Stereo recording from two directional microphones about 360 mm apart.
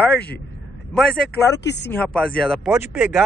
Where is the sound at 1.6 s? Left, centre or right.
Left.